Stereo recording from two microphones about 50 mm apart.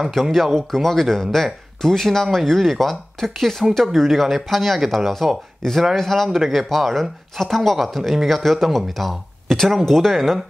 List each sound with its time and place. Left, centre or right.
0.1 s speech: centre